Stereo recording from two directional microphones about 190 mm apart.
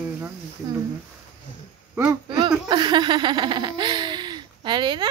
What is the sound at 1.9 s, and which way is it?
Speech, 15° right (ahead or behind).